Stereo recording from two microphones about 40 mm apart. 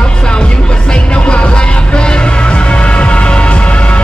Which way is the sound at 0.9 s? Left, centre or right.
Left.